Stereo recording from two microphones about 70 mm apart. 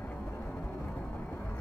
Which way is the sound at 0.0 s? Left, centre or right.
Left.